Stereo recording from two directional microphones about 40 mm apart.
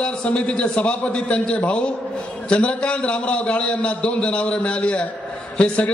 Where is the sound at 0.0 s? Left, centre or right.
Left.